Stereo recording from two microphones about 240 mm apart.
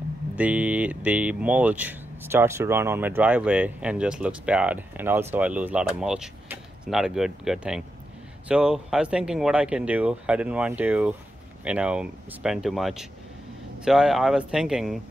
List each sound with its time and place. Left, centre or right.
0.4 s speech: centre